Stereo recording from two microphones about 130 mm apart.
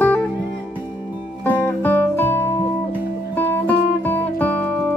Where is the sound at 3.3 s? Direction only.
15° left (ahead or behind).